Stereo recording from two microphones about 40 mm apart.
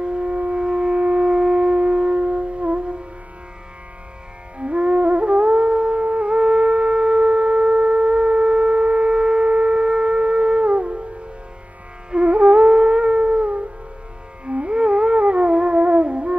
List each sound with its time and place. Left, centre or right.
0.0 s shofar: right
4.6 s music: right
6.3 s shofar: right
12.1 s music: right